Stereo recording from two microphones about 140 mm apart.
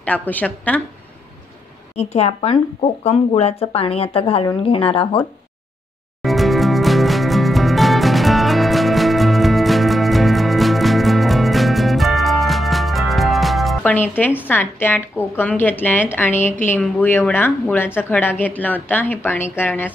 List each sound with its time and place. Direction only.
0.0 s a woman's voice: 10° left (ahead or behind)
2.0 s speech: 50° left (ahead or behind)
6.2 s music: centre (ahead or behind)
13.8 s a woman's voice: 15° left (ahead or behind)